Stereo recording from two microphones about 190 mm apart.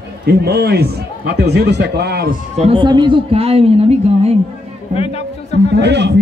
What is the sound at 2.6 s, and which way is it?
Speech, 25° right (ahead or behind).